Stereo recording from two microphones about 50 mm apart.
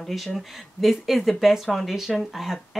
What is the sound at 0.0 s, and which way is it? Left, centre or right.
Speech, centre.